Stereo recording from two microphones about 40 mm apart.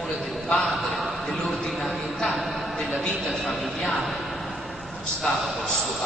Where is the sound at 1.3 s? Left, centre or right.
Centre.